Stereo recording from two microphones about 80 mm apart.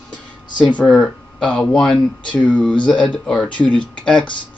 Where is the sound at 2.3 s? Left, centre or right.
Centre.